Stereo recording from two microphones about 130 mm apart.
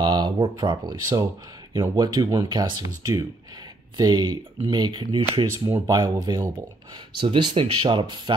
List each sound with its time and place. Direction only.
0.0 s speech: 35° right (ahead or behind)